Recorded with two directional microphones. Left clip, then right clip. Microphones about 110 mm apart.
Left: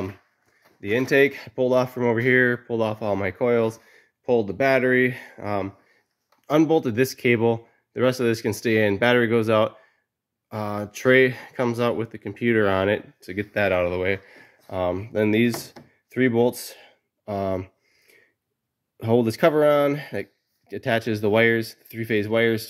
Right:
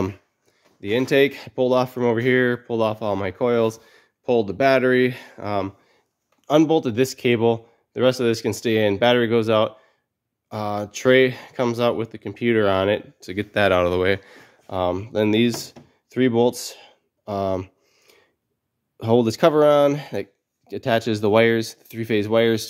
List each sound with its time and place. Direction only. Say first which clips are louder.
0.7 s speech: right 1 dB; 25° right (ahead or behind)
6.4 s speech: right 2 dB; 5° right (ahead or behind)
13.3 s speech: right 3 dB; 40° right (ahead or behind); by 14.2 s 70° right (ahead or behind)
14.3 s a sound: right 2 dB; 40° right (ahead or behind)
14.9 s speech: right 1 dB; 15° right (ahead or behind)
16.1 s a sound: right 2 dB; 15° right (ahead or behind)
18.9 s speech: right 2 dB; 20° right (ahead or behind)